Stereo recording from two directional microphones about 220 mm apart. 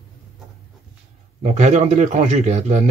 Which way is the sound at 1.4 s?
30° right (ahead or behind).